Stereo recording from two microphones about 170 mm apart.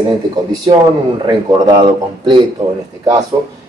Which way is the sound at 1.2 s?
25° right (ahead or behind).